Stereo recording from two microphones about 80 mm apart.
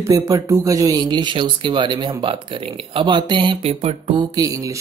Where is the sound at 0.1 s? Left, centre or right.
Right.